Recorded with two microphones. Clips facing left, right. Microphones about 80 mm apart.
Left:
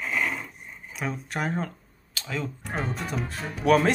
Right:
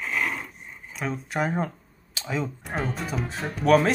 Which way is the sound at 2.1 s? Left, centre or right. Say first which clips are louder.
Right 3 dB; centre.